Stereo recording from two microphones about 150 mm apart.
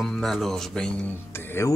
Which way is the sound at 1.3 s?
15° left (ahead or behind).